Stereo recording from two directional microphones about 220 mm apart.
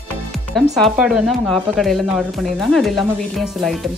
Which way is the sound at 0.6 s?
Centre (ahead or behind).